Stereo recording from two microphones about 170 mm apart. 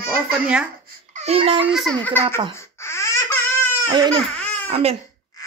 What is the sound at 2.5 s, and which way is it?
Babbling, 15° left (ahead or behind).